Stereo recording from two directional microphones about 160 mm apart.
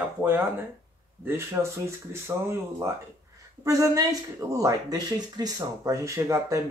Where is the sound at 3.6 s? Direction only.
20° right (ahead or behind).